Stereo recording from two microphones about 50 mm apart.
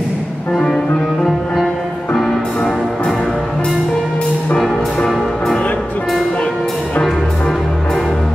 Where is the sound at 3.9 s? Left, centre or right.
Centre.